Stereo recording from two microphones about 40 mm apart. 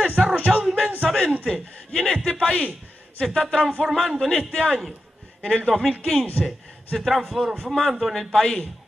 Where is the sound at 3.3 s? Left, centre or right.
Centre.